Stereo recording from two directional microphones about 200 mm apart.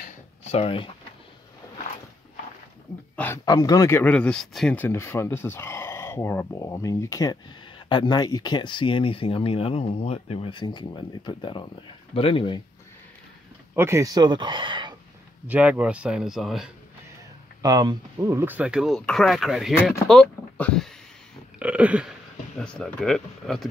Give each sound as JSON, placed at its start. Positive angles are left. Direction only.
{"t": 0.0, "sound": "a sound", "side_deg": 35}
{"t": 3.4, "sound": "speech", "side_deg": 20}
{"t": 13.7, "sound": "speech", "side_deg": -15}
{"t": 15.4, "sound": "speech", "side_deg": -10}
{"t": 17.6, "sound": "speech", "side_deg": -20}
{"t": 21.5, "sound": "a sound", "side_deg": -5}
{"t": 22.6, "sound": "speech", "side_deg": 5}